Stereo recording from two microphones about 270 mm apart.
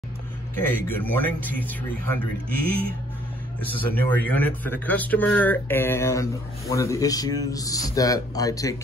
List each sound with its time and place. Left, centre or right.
0.6 s speech: centre
3.7 s speech: centre